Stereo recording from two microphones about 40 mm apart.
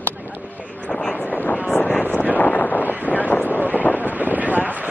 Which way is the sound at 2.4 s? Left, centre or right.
Left.